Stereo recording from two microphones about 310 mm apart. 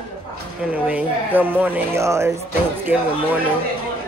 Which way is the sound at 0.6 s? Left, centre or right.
Centre.